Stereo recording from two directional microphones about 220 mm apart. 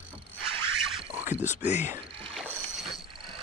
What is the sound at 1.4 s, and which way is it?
Whispering, 35° left (ahead or behind).